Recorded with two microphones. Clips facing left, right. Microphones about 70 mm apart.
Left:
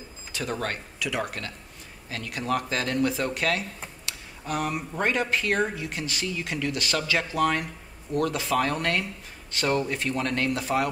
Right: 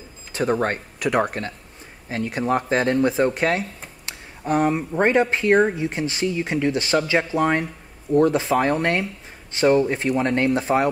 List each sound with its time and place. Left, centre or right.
0.3 s speech: right
1.0 s speech: right
2.0 s speech: right